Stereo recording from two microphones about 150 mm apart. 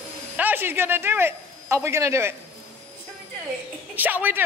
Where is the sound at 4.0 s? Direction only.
10° right (ahead or behind).